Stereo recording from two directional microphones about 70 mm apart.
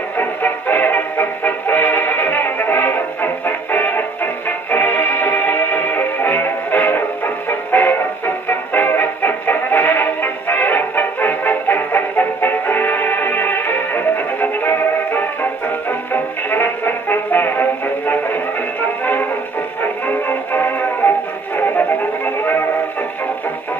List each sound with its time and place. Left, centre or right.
0.2 s music: left